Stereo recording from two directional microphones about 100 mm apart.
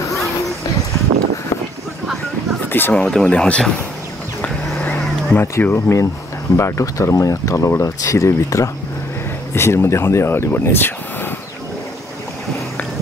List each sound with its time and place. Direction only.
2.7 s speech: 15° left (ahead or behind)
4.4 s vehicle: 15° left (ahead or behind)
6.5 s speech: 30° left (ahead or behind)